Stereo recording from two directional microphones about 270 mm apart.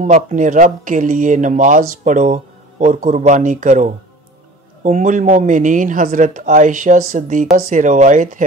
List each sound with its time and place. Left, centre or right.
0.0 s speech: right